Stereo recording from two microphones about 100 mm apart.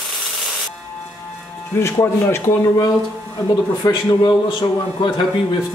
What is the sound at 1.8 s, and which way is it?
Speech, 30° left (ahead or behind).